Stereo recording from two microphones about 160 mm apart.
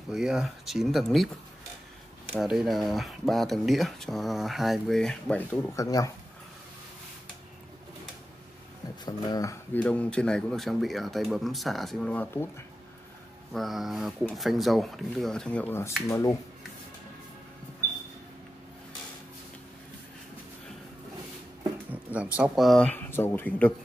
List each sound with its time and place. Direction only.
0.1 s speech: 5° right (ahead or behind)
2.3 s speech: centre (ahead or behind); by 6.1 s 20° left (ahead or behind)
9.0 s speech: 20° left (ahead or behind)
9.8 s speech: 5° left (ahead or behind)
13.5 s speech: centre (ahead or behind); by 16.3 s 20° left (ahead or behind)
21.9 s speech: 10° right (ahead or behind); by 23.7 s 10° left (ahead or behind)